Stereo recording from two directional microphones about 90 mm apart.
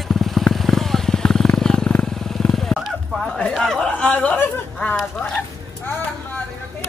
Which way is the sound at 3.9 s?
15° left (ahead or behind).